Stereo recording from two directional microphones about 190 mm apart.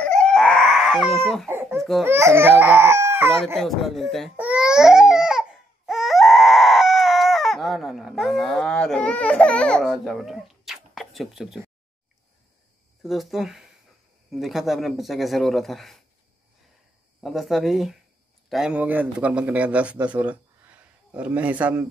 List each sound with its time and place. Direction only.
0.0 s baby cry: 5° left (ahead or behind)
1.5 s babbling: 10° right (ahead or behind)
1.8 s speech: centre (ahead or behind)
2.0 s speech: 15° right (ahead or behind)
3.5 s crying: centre (ahead or behind)
13.0 s speech: centre (ahead or behind)
17.2 s a man's voice: centre (ahead or behind)